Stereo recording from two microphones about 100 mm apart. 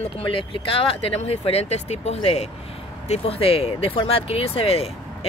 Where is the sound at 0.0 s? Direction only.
60° left (ahead or behind); by 2.4 s 90° left.